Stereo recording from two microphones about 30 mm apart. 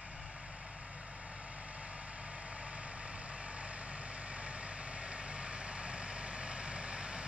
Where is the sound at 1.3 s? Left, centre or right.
Right.